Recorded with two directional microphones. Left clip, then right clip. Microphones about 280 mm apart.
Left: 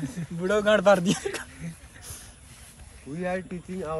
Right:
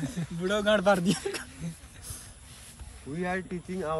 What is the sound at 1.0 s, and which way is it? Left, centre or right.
Speech, centre.